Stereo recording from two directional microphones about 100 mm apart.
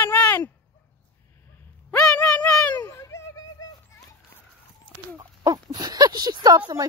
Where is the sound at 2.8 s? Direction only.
35° left (ahead or behind).